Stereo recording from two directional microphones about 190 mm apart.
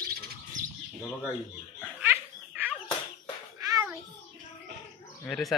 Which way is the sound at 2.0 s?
10° right (ahead or behind).